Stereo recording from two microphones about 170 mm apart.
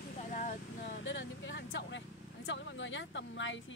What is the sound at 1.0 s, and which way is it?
Speech, 90° left.